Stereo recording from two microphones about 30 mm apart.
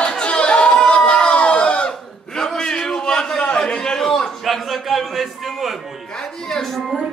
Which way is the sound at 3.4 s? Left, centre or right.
Left.